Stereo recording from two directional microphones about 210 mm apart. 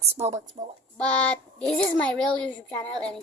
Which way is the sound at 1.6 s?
5° left (ahead or behind).